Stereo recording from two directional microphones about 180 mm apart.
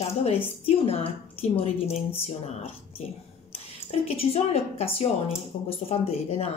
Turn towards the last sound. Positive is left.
turn(degrees=35)  # may be behind; listen again after turning